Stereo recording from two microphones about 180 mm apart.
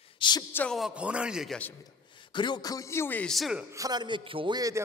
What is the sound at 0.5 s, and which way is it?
A man's voice, 5° left (ahead or behind).